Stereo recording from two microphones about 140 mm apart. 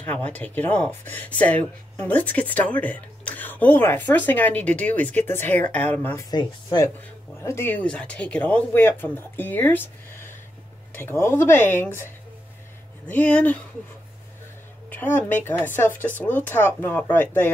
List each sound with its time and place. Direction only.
0.0 s a woman's voice: 10° left (ahead or behind)
6.3 s speech: 30° left (ahead or behind)
7.4 s a woman's voice: 15° left (ahead or behind)
14.9 s a woman's voice: 15° left (ahead or behind)